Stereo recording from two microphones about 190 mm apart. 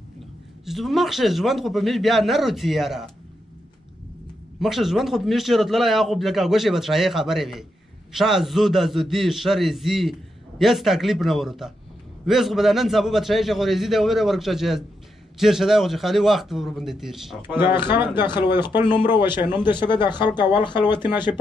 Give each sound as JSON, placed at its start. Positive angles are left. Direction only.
{"t": 0.7, "sound": "a man's voice", "side_deg": 0}
{"t": 4.6, "sound": "a man's voice", "side_deg": 0}
{"t": 17.9, "sound": "speech", "side_deg": 25}